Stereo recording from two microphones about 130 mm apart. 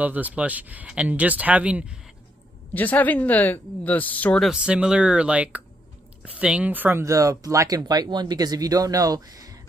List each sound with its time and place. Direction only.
0.0 s speech: 10° right (ahead or behind)
2.7 s speech: 15° left (ahead or behind)
4.4 s speech: 5° right (ahead or behind); by 9.6 s 30° right (ahead or behind)